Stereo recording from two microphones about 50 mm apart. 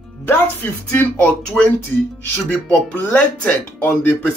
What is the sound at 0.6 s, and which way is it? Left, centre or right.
Speech, left.